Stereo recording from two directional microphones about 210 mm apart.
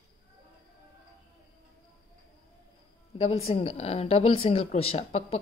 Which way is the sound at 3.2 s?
30° left (ahead or behind).